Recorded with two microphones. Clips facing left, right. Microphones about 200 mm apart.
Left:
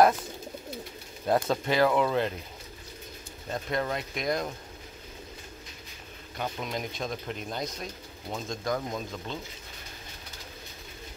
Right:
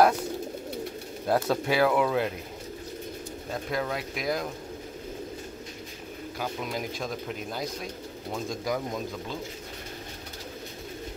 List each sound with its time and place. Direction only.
1.2 s speech: 5° right (ahead or behind)
3.4 s speech: centre (ahead or behind)
6.4 s speech: 5° right (ahead or behind)